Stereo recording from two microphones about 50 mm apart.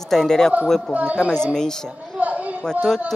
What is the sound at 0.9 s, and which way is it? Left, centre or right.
Speech, right.